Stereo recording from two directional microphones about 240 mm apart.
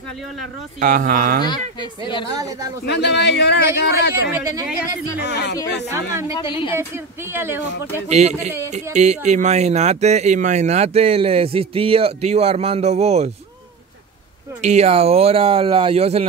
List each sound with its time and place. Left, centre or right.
0.7 s speech: right
1.4 s speech: centre
2.3 s speech: centre
2.8 s a man's voice: left
5.2 s a man's voice: left
5.9 s speech: centre
7.3 s speech: centre
8.1 s speech: right
14.6 s speech: right